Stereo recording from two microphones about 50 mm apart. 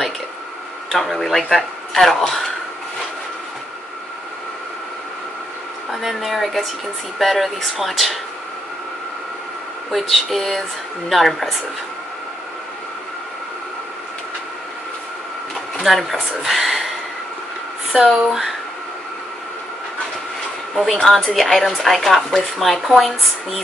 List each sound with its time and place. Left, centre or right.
0.8 s speech: centre
5.9 s a woman's voice: centre
9.8 s a woman's voice: centre
15.8 s speech: centre
18.1 s a woman's voice: centre
20.7 s a woman's voice: centre